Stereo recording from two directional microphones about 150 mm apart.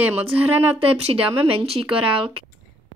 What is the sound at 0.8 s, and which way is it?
Speech, 40° right (ahead or behind).